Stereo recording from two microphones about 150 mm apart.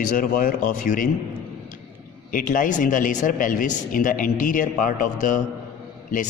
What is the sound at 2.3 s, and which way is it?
Speech, 65° left (ahead or behind).